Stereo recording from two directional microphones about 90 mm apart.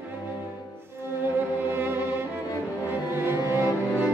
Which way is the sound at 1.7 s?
25° right (ahead or behind).